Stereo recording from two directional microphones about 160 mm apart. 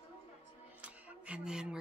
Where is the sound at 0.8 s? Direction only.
10° right (ahead or behind).